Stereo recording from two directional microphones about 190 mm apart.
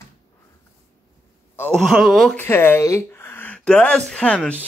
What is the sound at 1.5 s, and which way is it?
Speech, 5° left (ahead or behind).